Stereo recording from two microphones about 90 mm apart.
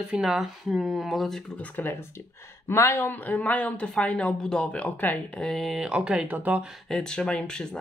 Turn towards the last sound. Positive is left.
turn(degrees=10)  # may be behind; listen again after turning